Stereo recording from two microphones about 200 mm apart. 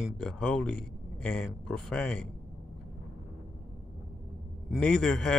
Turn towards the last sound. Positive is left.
turn(degrees=5)  # may be behind; listen again after turning